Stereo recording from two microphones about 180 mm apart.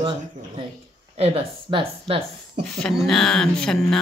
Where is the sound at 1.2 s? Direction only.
35° right (ahead or behind).